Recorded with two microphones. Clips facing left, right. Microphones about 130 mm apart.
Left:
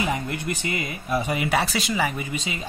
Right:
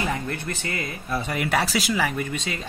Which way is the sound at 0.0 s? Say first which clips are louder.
Left 1 dB; 15° left (ahead or behind).